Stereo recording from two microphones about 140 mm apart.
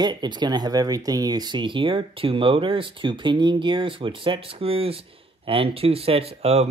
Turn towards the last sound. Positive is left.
turn(degrees=-45)  # may be behind; listen again after turning